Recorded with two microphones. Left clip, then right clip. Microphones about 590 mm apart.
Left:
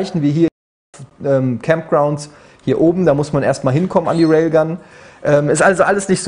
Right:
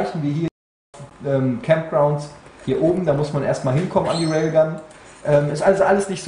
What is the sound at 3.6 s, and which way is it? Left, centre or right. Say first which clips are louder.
Speech: left 4 dB; left.